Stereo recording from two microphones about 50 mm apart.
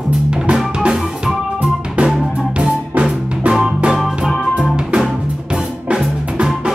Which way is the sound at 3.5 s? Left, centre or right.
Centre.